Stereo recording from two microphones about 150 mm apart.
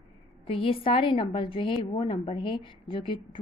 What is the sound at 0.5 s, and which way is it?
A woman's voice, 35° left (ahead or behind).